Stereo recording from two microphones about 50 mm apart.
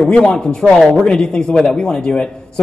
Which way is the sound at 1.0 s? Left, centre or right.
Centre.